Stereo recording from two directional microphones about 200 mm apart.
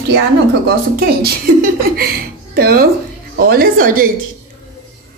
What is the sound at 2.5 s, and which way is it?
A woman's voice, 50° right (ahead or behind).